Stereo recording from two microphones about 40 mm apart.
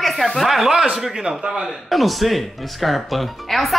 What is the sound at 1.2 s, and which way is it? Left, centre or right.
Speech, centre.